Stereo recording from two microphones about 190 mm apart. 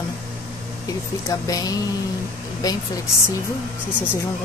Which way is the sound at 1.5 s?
20° left (ahead or behind).